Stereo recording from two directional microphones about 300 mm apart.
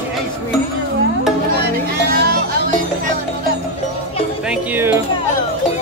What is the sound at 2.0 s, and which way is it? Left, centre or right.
Music, right.